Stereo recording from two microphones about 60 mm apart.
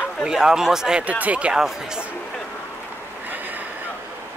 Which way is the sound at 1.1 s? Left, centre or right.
Right.